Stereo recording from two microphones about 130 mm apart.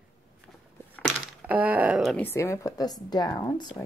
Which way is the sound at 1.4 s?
10° right (ahead or behind).